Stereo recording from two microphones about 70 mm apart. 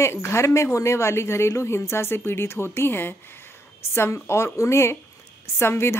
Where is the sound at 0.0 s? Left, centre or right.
Left.